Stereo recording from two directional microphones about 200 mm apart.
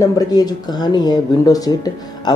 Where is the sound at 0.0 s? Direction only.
20° left (ahead or behind).